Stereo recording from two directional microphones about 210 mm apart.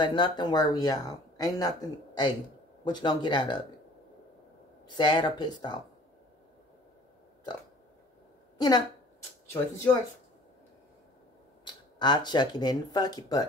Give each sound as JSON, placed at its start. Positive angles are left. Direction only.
{"t": 0.0, "sound": "speech", "side_deg": 20}
{"t": 4.8, "sound": "speech", "side_deg": 20}
{"t": 8.5, "sound": "a woman's voice", "side_deg": 20}
{"t": 11.6, "sound": "speech", "side_deg": 20}